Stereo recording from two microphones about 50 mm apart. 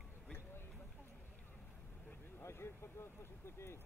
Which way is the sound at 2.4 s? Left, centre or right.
Left.